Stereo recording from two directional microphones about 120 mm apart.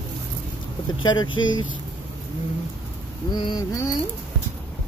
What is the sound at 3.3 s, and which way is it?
Speech, 40° left (ahead or behind).